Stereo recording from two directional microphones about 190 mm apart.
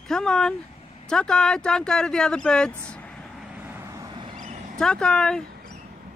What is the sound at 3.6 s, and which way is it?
Vehicle, 10° right (ahead or behind).